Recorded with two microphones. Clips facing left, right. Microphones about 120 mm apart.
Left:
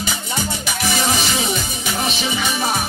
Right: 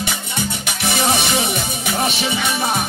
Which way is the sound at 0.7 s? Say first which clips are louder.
Right 2 dB; 60° right (ahead or behind).